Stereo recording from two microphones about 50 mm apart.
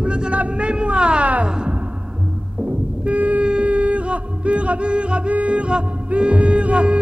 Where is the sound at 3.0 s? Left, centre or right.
Right.